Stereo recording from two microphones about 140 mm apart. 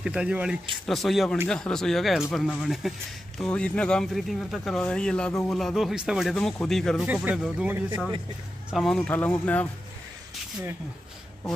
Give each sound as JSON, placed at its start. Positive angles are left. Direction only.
{"t": 0.0, "sound": "speech", "side_deg": -10}
{"t": 7.6, "sound": "speech", "side_deg": -15}
{"t": 8.6, "sound": "speech", "side_deg": 0}